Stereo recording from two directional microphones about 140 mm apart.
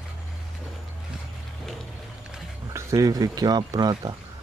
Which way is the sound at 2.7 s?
25° right (ahead or behind).